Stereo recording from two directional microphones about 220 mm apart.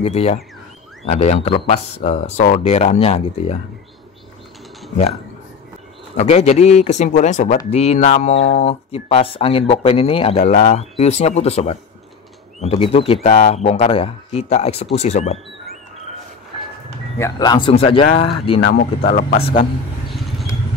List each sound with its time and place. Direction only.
0.0 s speech: 30° left (ahead or behind)
6.1 s speech: 30° left (ahead or behind)
17.2 s speech: 20° left (ahead or behind); by 19.5 s 35° left (ahead or behind)
20.1 s vehicle: centre (ahead or behind)